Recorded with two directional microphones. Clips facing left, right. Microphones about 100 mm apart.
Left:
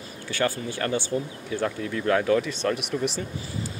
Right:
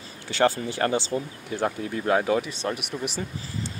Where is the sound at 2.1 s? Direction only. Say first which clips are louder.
Left 1 dB; 20° right (ahead or behind).